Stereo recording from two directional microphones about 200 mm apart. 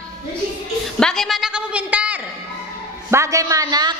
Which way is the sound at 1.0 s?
5° left (ahead or behind).